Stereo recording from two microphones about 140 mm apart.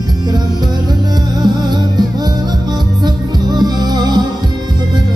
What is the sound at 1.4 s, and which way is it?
Music, 30° right (ahead or behind).